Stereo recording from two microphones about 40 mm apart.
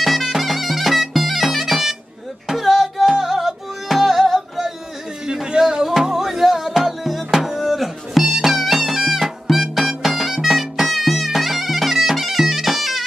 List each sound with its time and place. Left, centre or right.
0.0 s bagpipes: centre
2.4 s music: centre
5.2 s a sound: centre
5.9 s music: centre